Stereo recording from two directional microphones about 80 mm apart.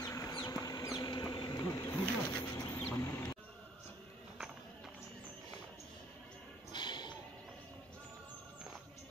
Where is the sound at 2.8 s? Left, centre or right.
Left.